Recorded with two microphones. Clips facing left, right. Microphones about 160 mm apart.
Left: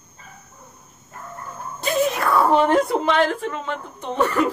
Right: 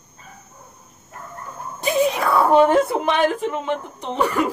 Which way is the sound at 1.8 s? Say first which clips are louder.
Right 2 dB; 15° right (ahead or behind).